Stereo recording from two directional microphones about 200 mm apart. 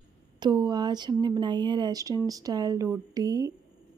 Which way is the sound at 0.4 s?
20° right (ahead or behind).